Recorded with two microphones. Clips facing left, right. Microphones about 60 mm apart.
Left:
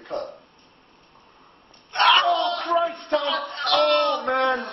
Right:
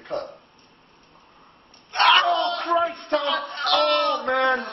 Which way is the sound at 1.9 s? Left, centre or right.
Centre.